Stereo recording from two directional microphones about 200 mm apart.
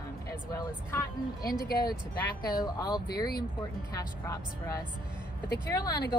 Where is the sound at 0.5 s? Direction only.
20° left (ahead or behind).